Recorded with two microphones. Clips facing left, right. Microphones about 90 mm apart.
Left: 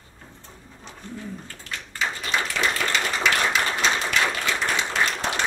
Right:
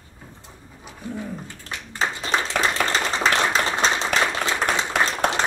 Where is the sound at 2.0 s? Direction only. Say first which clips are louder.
Right 3 dB; 30° right (ahead or behind).